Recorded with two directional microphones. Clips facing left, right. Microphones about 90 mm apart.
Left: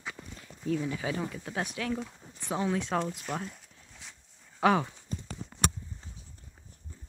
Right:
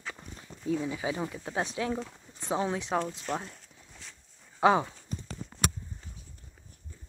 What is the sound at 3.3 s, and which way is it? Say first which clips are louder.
Speech: right 2 dB; 5° left (ahead or behind).